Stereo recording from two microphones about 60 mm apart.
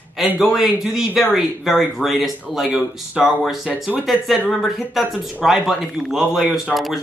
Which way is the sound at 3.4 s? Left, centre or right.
Centre.